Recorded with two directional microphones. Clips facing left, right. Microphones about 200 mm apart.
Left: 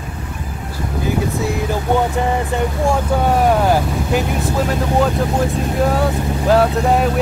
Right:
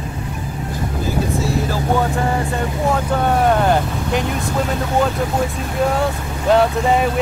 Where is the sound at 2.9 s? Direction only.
10° left (ahead or behind).